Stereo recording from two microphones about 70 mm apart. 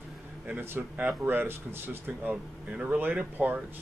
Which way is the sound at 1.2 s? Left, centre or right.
Right.